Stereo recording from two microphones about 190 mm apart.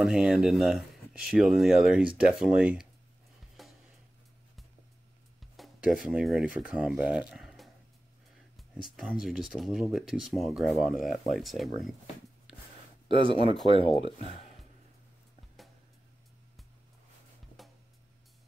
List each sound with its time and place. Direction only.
0.0 s speech: 5° right (ahead or behind)
3.6 s music: centre (ahead or behind)
5.4 s speech: centre (ahead or behind)
8.8 s speech: centre (ahead or behind)
13.7 s speech: 30° left (ahead or behind)